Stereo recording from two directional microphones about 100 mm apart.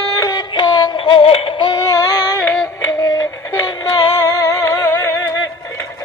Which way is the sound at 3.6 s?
45° left (ahead or behind).